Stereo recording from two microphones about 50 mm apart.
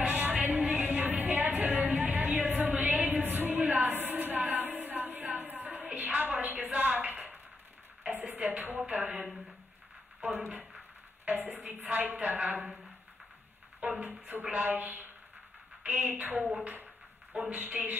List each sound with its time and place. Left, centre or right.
0.1 s music: right
2.7 s a sound: right
8.1 s speech: right
10.2 s a woman's voice: right
13.7 s a woman's voice: right
16.6 s a sound: right
17.5 s a woman's voice: right